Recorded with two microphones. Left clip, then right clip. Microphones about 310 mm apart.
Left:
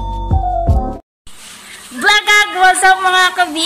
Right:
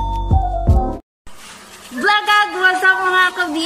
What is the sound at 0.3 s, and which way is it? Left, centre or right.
Music, centre.